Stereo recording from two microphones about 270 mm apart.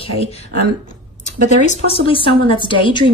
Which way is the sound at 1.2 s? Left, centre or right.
Left.